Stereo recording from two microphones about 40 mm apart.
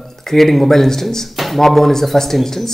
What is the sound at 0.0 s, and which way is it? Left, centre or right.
A man's voice, centre.